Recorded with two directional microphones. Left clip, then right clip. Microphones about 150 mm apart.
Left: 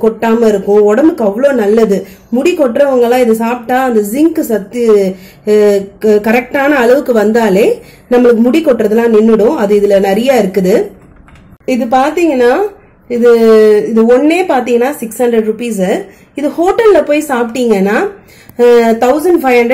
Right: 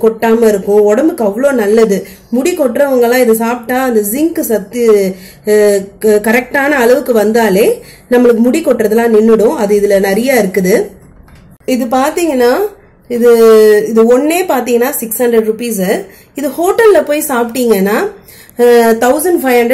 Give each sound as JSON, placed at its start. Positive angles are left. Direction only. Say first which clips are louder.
{"t": 0.2, "sound": "speech", "louder": "right 1 dB", "side_deg": 25}
{"t": 11.6, "sound": "speech", "louder": "left 2 dB", "side_deg": 35}